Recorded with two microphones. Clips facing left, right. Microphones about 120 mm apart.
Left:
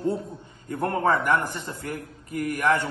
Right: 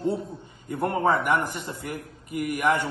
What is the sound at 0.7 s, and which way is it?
A man's voice, 10° right (ahead or behind).